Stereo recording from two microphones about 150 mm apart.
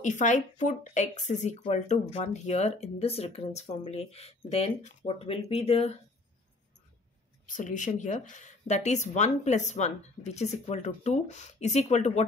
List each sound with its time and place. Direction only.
0.0 s speech: 55° left (ahead or behind)
7.4 s speech: 60° left (ahead or behind)